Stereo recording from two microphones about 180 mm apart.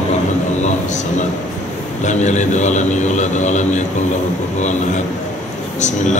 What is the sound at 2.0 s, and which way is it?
A man's voice, 40° left (ahead or behind).